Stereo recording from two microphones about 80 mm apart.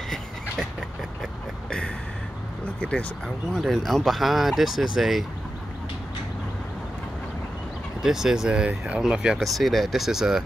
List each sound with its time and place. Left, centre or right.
2.8 s speech: centre
3.5 s speech: centre
8.0 s speech: centre
9.4 s speech: centre